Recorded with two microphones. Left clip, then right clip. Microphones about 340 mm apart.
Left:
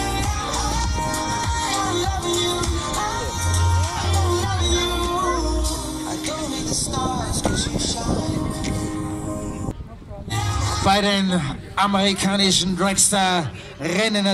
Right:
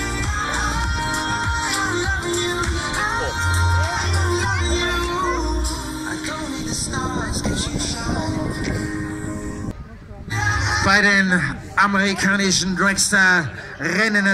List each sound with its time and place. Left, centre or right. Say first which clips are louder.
0.4 s music: right 2 dB; centre
2.0 s music: even; left
2.5 s music: right 1 dB; centre
4.3 s music: even; left
6.7 s music: left 2 dB; left
7.4 s a sound: left 1 dB; left
10.4 s a sound: right 3 dB; centre
12.4 s speech: left 1 dB; left
12.6 s a man's voice: right 2 dB; centre